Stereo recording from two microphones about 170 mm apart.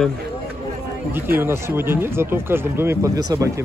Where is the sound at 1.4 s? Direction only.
15° right (ahead or behind).